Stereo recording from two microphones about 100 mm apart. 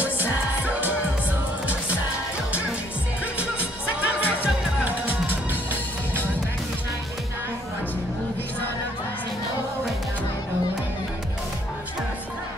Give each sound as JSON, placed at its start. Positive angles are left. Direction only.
{"t": 0.0, "sound": "music", "side_deg": -15}
{"t": 3.3, "sound": "music", "side_deg": -15}